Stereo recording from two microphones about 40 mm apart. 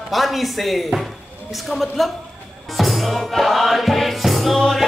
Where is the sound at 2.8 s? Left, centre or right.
Centre.